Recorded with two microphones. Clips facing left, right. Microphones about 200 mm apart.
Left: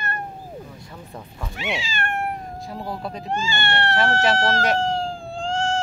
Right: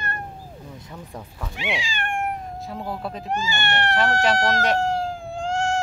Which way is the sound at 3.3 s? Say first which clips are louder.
Left 1 dB; 20° right (ahead or behind).